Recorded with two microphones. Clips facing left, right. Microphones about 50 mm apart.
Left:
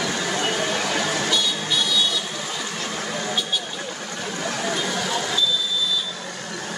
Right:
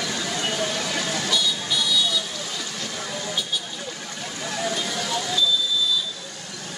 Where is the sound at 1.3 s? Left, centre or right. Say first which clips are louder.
Left 1 dB; left.